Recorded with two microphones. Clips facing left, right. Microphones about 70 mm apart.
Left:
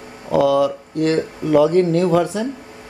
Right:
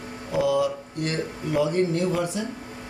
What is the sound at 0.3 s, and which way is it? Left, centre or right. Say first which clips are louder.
Speech: left 7 dB; left.